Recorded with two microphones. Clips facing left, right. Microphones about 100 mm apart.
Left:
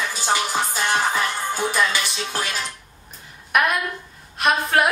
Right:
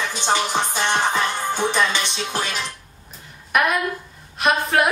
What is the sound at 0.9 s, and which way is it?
Music, 5° left (ahead or behind).